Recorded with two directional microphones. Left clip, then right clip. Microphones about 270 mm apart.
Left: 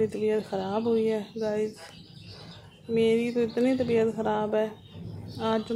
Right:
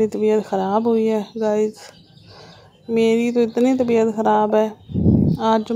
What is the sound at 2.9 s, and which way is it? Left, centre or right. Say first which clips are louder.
Speech: right 7 dB; right.